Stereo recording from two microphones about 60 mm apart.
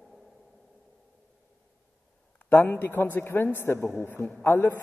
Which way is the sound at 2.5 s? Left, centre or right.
Left.